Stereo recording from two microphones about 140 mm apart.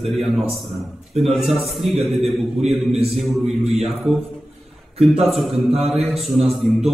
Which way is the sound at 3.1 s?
Centre (ahead or behind).